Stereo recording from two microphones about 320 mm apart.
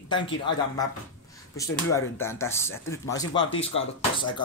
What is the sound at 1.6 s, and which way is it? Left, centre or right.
Speech, centre.